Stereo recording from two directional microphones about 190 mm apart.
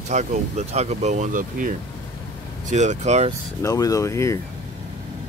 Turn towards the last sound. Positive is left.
turn(degrees=15)  # may be behind; listen again after turning